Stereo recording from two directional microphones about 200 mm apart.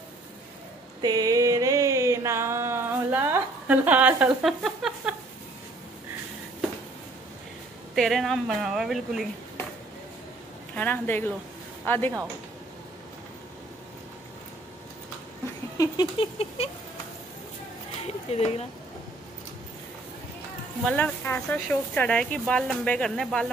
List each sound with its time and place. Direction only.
1.0 s a sound: 20° right (ahead or behind); by 5.1 s centre (ahead or behind)
7.9 s speech: centre (ahead or behind)
10.7 s a woman's voice: 10° left (ahead or behind)
15.8 s a sound: 25° left (ahead or behind)
18.0 s speech: 30° left (ahead or behind)
20.8 s speech: 5° left (ahead or behind)